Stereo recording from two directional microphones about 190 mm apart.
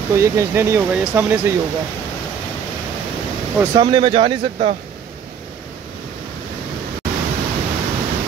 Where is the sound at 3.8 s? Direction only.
25° right (ahead or behind).